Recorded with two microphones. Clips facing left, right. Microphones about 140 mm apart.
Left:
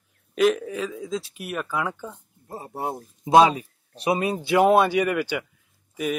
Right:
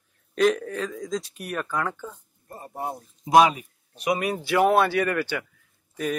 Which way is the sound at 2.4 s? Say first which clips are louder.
Left 4 dB; 90° left.